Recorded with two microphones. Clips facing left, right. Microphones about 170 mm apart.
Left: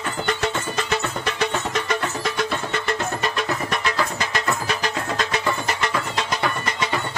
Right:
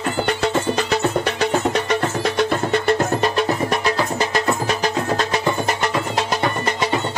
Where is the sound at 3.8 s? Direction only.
40° right (ahead or behind).